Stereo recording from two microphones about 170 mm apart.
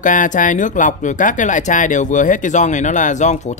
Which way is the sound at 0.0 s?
50° left (ahead or behind).